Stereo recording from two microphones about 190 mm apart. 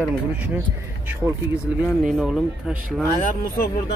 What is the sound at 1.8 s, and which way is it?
Speech, 5° right (ahead or behind).